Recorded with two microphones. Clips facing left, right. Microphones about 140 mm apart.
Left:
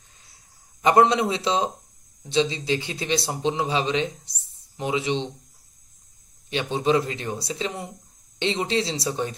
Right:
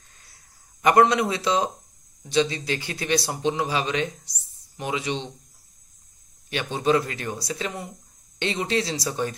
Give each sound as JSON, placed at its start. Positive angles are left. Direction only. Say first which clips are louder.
{"t": 0.8, "sound": "speech", "louder": "even", "side_deg": 25}
{"t": 6.5, "sound": "speech", "louder": "even", "side_deg": 25}